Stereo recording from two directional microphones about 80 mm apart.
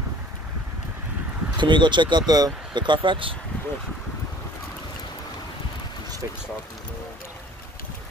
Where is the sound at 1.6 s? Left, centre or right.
Right.